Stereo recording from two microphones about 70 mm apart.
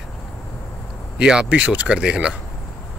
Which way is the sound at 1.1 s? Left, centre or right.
Centre.